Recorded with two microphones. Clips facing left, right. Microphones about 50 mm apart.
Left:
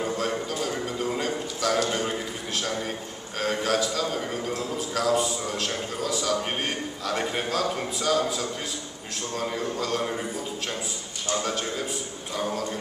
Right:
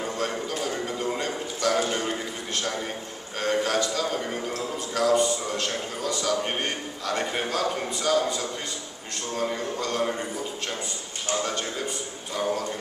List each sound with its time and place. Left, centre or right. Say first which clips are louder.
0.0 s a sound: left 1 dB; centre
3.3 s a man's voice: right 1 dB; centre
11.4 s a man's voice: left 1 dB; centre